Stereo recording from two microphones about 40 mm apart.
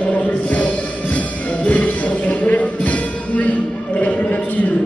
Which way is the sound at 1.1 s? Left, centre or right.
Left.